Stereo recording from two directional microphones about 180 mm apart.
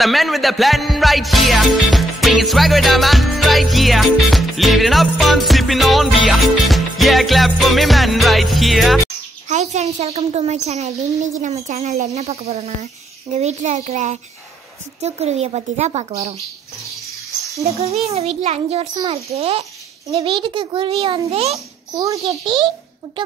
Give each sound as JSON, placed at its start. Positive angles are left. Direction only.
{"t": 0.0, "sound": "music", "side_deg": 0}
{"t": 9.5, "sound": "a child's voice", "side_deg": -40}
{"t": 17.6, "sound": "a child's voice", "side_deg": -35}
{"t": 21.9, "sound": "a child's voice", "side_deg": -20}